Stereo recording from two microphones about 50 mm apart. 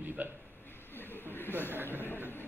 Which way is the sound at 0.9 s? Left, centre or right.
Left.